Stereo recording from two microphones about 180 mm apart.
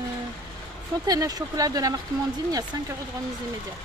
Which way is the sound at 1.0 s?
20° right (ahead or behind).